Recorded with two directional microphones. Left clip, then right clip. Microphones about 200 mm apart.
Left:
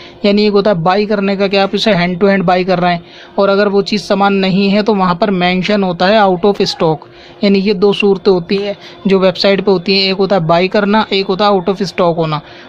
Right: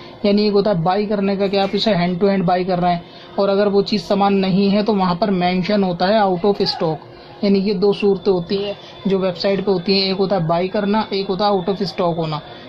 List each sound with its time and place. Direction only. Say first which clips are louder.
0.2 s a man's voice: left 5 dB; 25° left (ahead or behind)